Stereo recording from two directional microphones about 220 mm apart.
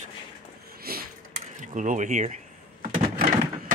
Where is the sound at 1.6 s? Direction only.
35° right (ahead or behind).